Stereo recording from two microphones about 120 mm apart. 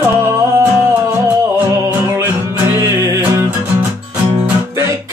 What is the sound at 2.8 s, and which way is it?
Music, 25° right (ahead or behind).